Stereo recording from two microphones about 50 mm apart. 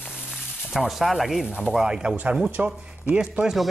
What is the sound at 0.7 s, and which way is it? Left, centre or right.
Speech, centre.